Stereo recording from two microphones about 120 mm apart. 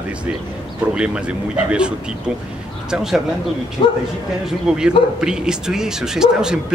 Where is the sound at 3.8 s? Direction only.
40° left (ahead or behind).